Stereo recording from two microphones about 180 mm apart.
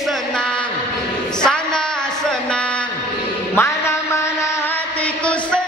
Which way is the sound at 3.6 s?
15° left (ahead or behind).